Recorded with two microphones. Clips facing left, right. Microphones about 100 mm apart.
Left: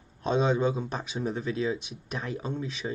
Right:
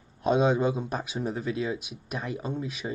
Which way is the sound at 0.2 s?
10° right (ahead or behind).